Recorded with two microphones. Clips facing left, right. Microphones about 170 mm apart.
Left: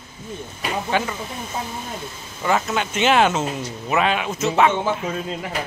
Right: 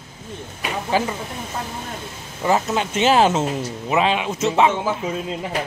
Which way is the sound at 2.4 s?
30° right (ahead or behind).